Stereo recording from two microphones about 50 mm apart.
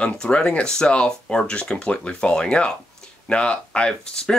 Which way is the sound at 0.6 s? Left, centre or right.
Centre.